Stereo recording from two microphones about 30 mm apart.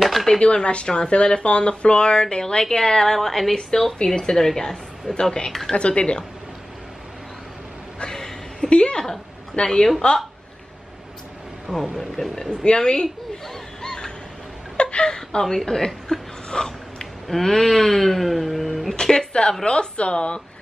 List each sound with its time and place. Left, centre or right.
0.0 s a sound: centre
0.4 s a woman's voice: left; by 3.5 s centre
4.0 s a woman's voice: left
5.2 s a woman's voice: left
5.8 s speech: left
8.1 s a sound: centre
8.5 s a woman's voice: left
11.6 s speech: centre
12.4 s a woman's voice: left
13.8 s a sound: left
14.8 s a sound: left
15.0 s a woman's voice: left; by 18.9 s centre
18.9 s a woman's voice: left